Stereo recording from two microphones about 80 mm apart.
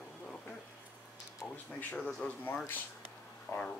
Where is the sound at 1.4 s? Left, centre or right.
Left.